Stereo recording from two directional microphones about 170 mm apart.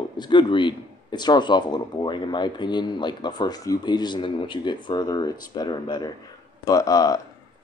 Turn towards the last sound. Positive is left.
turn(degrees=20)  # may be behind; listen again after turning